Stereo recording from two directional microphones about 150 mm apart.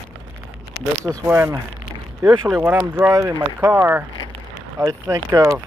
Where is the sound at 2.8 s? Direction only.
20° right (ahead or behind).